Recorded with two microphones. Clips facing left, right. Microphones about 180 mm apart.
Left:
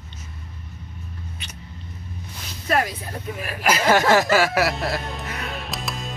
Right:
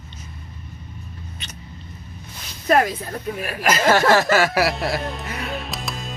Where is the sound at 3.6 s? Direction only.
15° left (ahead or behind).